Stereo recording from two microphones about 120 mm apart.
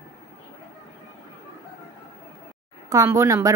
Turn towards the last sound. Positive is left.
turn(degrees=-25)  # may be behind; listen again after turning